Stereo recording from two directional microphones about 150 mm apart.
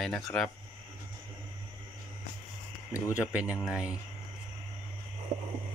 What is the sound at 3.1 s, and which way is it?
Speech, 10° right (ahead or behind).